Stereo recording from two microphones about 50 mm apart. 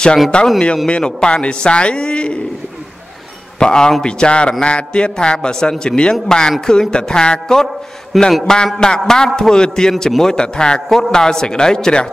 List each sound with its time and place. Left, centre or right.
0.3 s a man's voice: left
3.5 s a man's voice: centre
8.1 s a man's voice: centre
8.7 s a man's voice: centre